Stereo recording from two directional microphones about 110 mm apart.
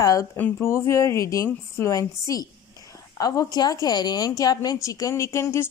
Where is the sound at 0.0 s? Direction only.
30° left (ahead or behind).